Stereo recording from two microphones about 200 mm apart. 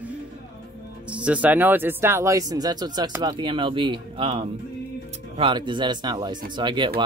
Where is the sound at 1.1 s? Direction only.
5° right (ahead or behind).